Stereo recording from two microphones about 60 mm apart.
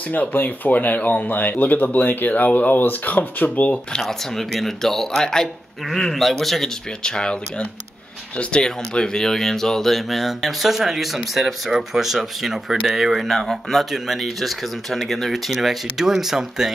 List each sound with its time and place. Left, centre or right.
0.1 s speech: left
4.0 s speech: centre
7.0 s speech: centre